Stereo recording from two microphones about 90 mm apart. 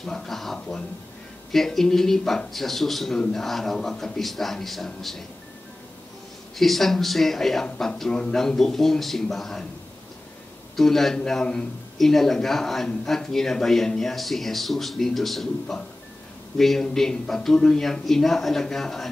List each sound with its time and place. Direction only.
0.0 s a man's voice: 5° left (ahead or behind)
6.5 s a man's voice: centre (ahead or behind)
10.8 s a man's voice: 5° left (ahead or behind)